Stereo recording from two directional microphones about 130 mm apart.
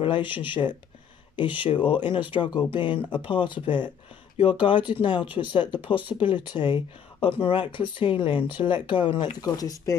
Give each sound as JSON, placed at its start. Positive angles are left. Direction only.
{"t": 0.0, "sound": "speech", "side_deg": 40}